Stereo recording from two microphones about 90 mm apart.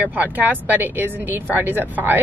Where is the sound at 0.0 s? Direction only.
15° right (ahead or behind).